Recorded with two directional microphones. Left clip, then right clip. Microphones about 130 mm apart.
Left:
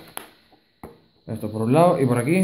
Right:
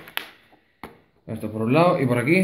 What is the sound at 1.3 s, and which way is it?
Speech, 20° left (ahead or behind).